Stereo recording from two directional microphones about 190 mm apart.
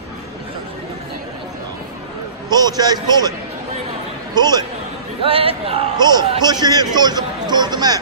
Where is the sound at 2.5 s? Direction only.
20° right (ahead or behind).